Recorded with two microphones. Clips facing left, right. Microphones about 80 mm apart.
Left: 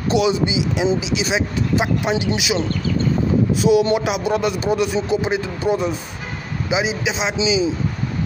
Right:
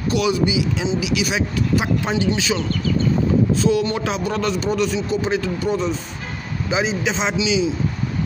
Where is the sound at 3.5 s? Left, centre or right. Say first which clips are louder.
Left 3 dB; centre.